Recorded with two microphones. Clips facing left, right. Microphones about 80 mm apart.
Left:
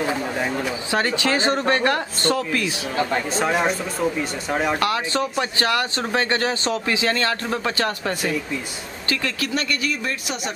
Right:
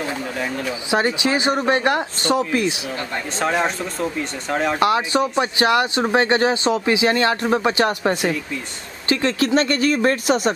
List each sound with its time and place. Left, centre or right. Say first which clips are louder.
0.8 s speech: right 3 dB; centre
3.3 s speech: right 2 dB; centre
4.7 s speech: right 4 dB; right